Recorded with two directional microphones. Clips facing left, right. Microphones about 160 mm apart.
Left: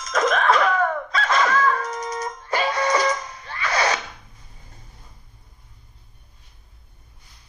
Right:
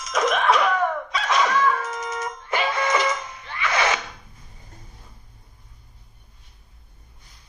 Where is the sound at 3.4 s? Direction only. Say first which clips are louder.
Even; 35° left (ahead or behind).